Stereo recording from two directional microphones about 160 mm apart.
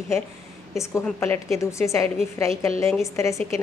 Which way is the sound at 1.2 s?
15° left (ahead or behind).